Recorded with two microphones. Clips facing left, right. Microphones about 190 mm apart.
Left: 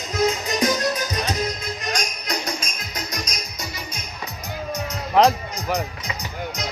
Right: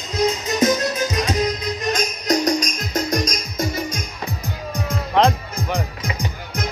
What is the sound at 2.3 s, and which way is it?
Music, 40° right (ahead or behind).